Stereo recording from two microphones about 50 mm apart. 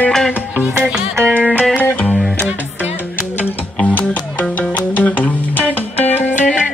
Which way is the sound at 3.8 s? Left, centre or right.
Left.